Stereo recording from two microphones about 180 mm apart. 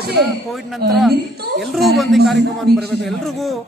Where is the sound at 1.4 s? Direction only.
60° right (ahead or behind).